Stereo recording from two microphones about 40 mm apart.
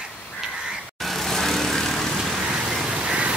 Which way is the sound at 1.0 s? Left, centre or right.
Centre.